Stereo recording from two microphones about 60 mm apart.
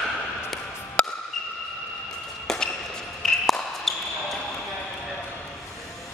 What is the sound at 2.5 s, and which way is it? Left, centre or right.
Basketball bounce, centre.